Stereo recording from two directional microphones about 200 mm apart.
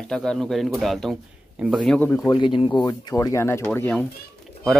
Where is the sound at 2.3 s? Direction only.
25° left (ahead or behind).